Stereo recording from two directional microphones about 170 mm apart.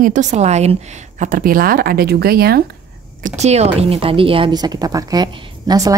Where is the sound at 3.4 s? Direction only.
40° right (ahead or behind).